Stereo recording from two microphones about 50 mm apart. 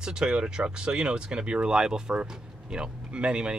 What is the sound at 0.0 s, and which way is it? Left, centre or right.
Speech, centre.